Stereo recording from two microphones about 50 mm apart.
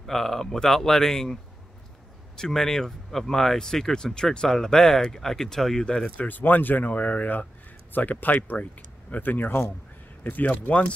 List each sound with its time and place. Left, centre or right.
0.0 s speech: centre
6.1 s speech: left